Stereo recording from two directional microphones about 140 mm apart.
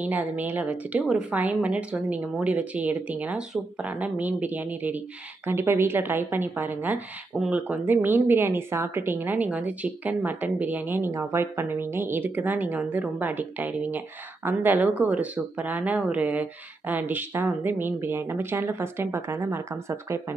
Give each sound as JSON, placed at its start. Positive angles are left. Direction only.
{"t": 0.0, "sound": "a woman's voice", "side_deg": -10}